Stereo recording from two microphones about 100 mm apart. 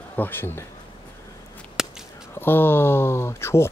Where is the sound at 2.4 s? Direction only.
20° left (ahead or behind).